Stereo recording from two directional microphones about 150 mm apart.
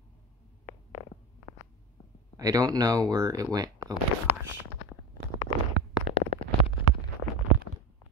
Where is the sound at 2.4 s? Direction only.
25° right (ahead or behind).